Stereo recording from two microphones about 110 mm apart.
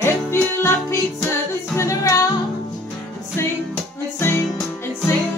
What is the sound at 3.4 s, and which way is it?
Music, 25° left (ahead or behind).